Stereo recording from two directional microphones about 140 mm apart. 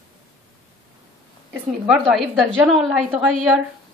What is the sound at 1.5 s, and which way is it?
A woman's voice, 5° right (ahead or behind).